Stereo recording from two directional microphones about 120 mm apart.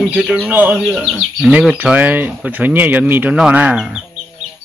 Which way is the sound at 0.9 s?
Centre (ahead or behind).